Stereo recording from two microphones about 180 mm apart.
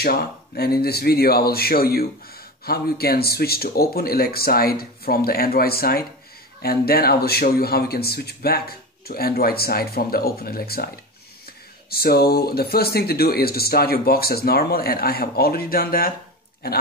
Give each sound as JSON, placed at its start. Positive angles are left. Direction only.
{"t": 0.0, "sound": "speech", "side_deg": 60}
{"t": 11.9, "sound": "speech", "side_deg": 60}